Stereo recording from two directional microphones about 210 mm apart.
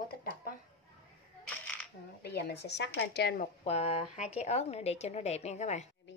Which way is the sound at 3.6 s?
30° left (ahead or behind).